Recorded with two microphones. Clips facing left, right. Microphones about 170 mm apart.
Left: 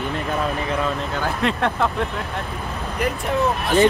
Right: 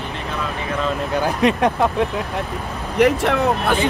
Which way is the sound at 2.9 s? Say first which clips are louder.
Right 7 dB; 75° right (ahead or behind).